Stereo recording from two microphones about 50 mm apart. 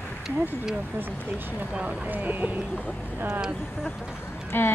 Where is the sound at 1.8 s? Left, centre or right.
Right.